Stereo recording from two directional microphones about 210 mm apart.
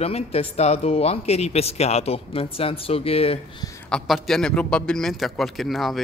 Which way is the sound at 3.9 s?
5° left (ahead or behind).